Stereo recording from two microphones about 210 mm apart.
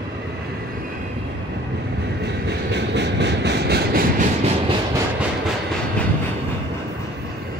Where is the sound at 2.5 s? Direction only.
55° right (ahead or behind).